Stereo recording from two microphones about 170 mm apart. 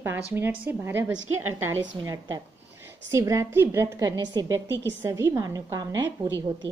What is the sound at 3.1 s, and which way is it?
A woman's voice, 20° right (ahead or behind).